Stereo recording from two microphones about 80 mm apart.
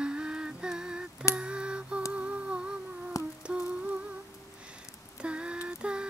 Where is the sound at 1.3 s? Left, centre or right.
Centre.